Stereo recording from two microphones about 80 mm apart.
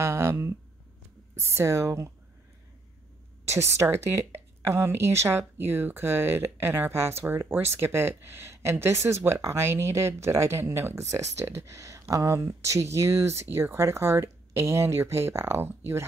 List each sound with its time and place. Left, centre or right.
0.0 s a woman's voice: right
3.4 s a woman's voice: right